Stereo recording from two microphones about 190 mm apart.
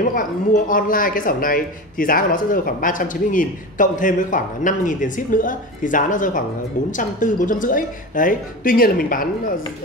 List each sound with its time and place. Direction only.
0.1 s speech: 45° left (ahead or behind)